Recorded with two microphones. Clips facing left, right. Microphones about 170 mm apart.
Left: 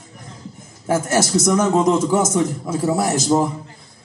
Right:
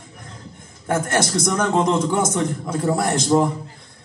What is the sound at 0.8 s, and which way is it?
A man's voice, 5° left (ahead or behind).